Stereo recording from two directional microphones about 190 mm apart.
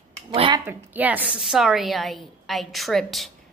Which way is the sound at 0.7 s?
10° right (ahead or behind).